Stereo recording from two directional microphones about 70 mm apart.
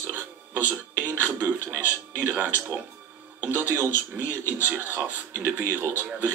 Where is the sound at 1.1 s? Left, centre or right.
Right.